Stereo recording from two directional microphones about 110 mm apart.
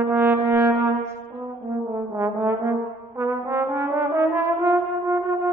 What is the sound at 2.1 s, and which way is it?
Brass instrument, 25° right (ahead or behind).